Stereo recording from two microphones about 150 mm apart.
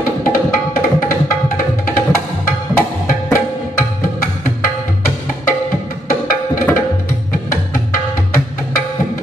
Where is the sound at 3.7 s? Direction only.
65° left (ahead or behind).